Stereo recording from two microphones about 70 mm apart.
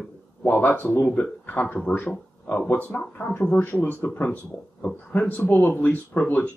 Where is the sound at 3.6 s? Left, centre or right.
Left.